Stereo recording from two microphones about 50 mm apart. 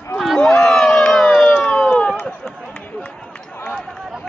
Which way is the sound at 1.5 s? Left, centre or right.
Left.